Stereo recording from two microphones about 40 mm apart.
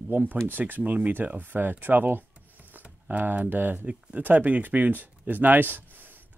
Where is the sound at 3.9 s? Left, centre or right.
Right.